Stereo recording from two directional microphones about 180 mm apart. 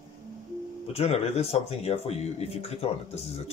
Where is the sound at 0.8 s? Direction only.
35° left (ahead or behind).